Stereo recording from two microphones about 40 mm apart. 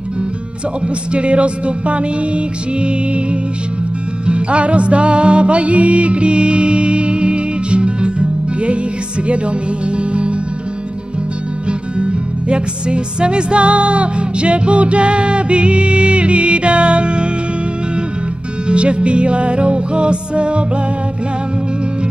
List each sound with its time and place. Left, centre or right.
1.1 s music: right
12.0 s music: right
18.7 s music: right